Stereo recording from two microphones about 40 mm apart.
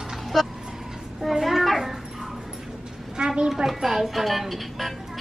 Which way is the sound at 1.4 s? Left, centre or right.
Centre.